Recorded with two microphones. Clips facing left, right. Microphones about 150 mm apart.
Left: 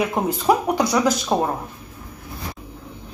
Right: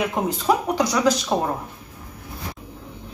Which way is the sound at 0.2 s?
5° left (ahead or behind).